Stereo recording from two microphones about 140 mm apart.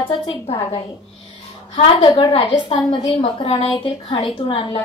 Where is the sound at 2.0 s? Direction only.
35° left (ahead or behind).